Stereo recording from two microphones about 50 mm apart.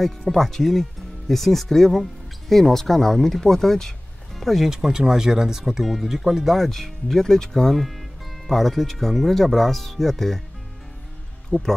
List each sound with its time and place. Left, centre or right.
0.0 s speech: centre
4.6 s speech: centre
11.5 s speech: left